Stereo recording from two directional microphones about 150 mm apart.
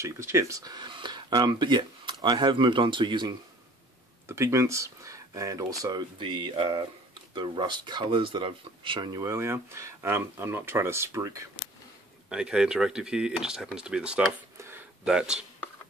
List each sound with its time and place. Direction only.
0.0 s speech: 20° right (ahead or behind)
4.3 s speech: 20° right (ahead or behind)
12.3 s speech: 5° right (ahead or behind)
14.6 s a sound: 15° right (ahead or behind)